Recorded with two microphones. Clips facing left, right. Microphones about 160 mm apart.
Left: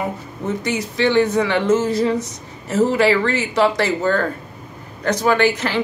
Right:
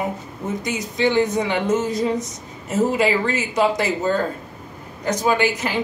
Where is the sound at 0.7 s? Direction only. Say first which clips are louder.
Left 2 dB; 15° right (ahead or behind).